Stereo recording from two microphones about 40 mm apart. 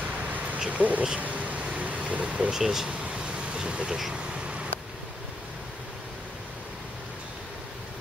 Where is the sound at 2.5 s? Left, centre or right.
Centre.